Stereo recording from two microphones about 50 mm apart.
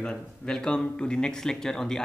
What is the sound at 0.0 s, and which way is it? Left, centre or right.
Speech, centre.